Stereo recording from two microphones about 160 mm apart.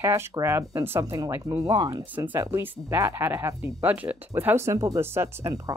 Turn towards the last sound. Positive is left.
turn(degrees=-20)  # may be behind; listen again after turning